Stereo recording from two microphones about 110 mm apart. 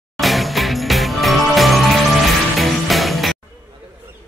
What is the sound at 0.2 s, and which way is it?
Music, centre (ahead or behind).